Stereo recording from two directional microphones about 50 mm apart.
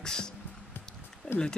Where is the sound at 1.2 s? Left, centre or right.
Left.